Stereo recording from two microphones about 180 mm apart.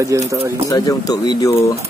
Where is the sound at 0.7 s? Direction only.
20° left (ahead or behind).